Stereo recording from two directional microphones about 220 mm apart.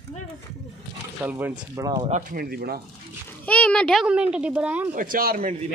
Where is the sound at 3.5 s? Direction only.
5° left (ahead or behind).